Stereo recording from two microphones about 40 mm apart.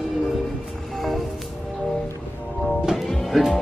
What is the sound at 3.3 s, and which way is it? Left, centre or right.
Music, centre.